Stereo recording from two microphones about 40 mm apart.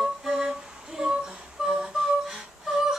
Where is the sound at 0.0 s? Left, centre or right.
Centre.